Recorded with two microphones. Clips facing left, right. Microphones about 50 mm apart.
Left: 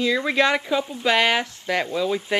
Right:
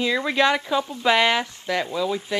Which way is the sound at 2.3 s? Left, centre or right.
Left.